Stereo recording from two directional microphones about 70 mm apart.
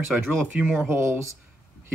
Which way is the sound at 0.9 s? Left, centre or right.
Right.